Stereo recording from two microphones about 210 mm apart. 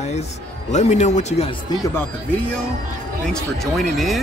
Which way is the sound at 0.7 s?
35° left (ahead or behind).